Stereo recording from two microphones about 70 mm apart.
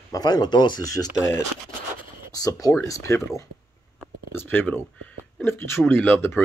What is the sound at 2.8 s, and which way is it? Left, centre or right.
Speech, left.